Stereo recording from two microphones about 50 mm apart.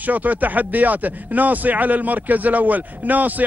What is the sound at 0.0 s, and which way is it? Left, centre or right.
Speech, right.